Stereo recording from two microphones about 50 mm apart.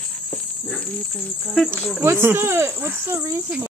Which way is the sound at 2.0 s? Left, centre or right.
Right.